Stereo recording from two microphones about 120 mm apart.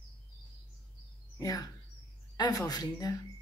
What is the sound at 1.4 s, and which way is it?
A woman's voice, 30° left (ahead or behind).